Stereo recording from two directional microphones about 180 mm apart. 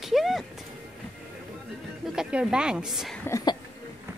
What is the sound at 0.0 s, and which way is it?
Music, centre (ahead or behind).